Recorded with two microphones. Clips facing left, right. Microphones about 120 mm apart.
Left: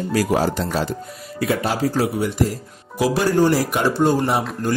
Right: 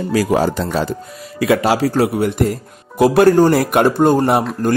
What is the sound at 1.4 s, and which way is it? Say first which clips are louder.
Speech: right 6 dB; 90° right.